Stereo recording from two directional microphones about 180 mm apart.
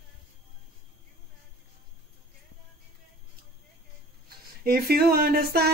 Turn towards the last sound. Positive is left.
turn(degrees=-60)  # may be behind; listen again after turning